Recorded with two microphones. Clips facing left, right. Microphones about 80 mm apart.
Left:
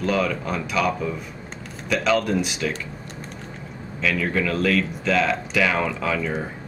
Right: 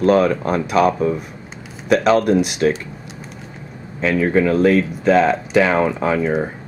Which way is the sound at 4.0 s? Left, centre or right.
Right.